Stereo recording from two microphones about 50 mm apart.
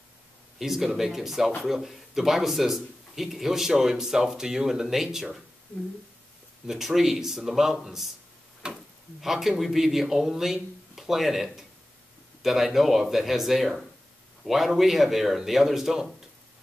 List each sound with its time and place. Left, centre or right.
0.6 s speech: centre
6.7 s speech: centre
8.6 s speech: centre
9.2 s speech: centre